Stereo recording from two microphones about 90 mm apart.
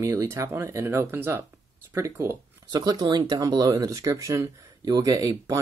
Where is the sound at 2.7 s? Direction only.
50° right (ahead or behind).